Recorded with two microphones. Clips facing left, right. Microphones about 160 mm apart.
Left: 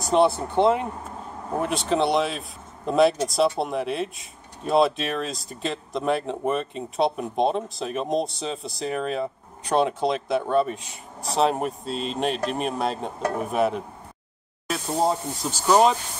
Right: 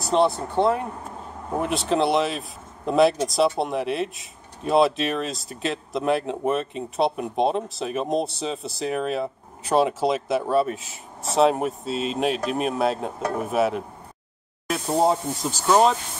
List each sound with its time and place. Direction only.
0.0 s speech: 5° left (ahead or behind)
0.6 s speech: 20° left (ahead or behind)
1.6 s speech: centre (ahead or behind)
15.6 s speech: 10° left (ahead or behind)